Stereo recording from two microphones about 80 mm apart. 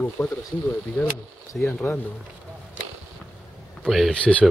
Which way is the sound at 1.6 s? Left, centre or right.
Centre.